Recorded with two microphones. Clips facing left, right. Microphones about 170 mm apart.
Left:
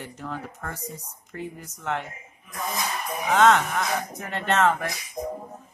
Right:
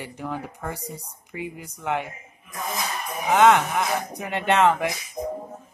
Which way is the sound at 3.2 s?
20° right (ahead or behind).